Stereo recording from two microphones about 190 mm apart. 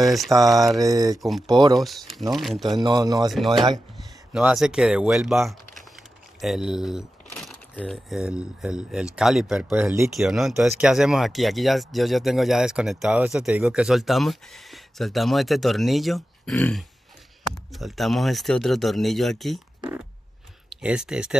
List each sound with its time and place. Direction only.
0.0 s speech: centre (ahead or behind)
0.3 s speech: 20° right (ahead or behind)
0.7 s a sound: 20° right (ahead or behind)
1.8 s speech: centre (ahead or behind)
2.7 s a sound: 20° right (ahead or behind)
3.3 s speech: centre (ahead or behind)
3.5 s a sound: 25° right (ahead or behind)
4.3 s speech: 5° right (ahead or behind)
6.4 s speech: centre (ahead or behind)
9.7 s speech: 10° right (ahead or behind)
10.1 s speech: centre (ahead or behind)
20.7 s speech: 5° right (ahead or behind)